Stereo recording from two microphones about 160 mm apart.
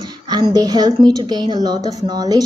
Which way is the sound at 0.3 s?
25° right (ahead or behind).